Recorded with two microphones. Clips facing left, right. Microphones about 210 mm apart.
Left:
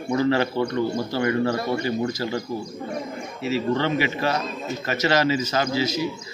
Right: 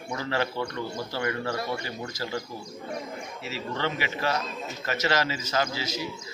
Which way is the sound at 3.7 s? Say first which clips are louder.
Left 7 dB; 20° left (ahead or behind).